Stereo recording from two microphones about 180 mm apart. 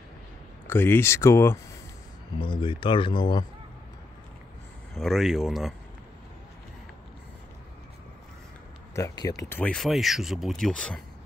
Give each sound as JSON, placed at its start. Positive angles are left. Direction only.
{"t": 0.7, "sound": "speech", "side_deg": 10}
{"t": 2.3, "sound": "speech", "side_deg": 25}
{"t": 4.9, "sound": "speech", "side_deg": 0}
{"t": 8.9, "sound": "speech", "side_deg": 20}